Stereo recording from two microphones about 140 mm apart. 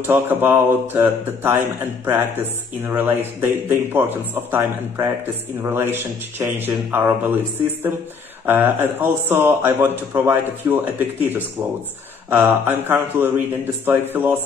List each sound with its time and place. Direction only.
0.0 s a man's voice: 15° right (ahead or behind)
12.3 s a man's voice: 15° right (ahead or behind)